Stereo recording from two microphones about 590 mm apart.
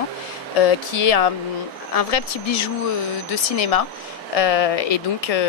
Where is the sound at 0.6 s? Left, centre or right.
Left.